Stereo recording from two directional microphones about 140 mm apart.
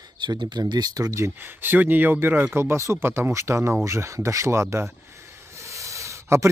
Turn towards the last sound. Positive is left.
turn(degrees=-20)  # may be behind; listen again after turning